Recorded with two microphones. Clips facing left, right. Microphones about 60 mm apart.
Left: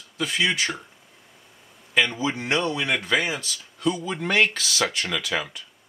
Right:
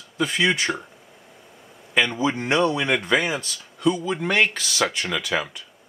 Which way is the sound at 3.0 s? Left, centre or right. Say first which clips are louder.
Right 2 dB; right.